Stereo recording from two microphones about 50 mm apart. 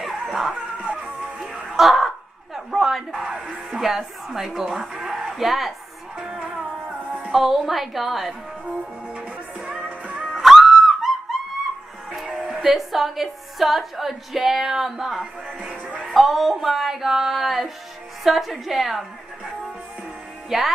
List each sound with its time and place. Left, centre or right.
0.0 s dog: centre
0.6 s a sound: right
1.7 s a sound: centre
3.8 s a woman's voice: centre
6.6 s music: centre
7.3 s speech: centre
8.6 s music: centre
10.2 s music: centre
12.1 s a woman's voice: centre
20.4 s speech: centre